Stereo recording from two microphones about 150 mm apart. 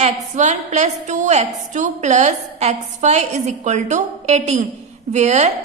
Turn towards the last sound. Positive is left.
turn(degrees=-50)  # may be behind; listen again after turning